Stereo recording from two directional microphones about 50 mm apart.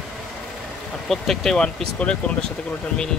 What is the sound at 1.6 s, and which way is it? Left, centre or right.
Speech, centre.